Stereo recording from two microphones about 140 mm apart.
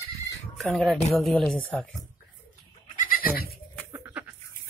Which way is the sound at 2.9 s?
90° left.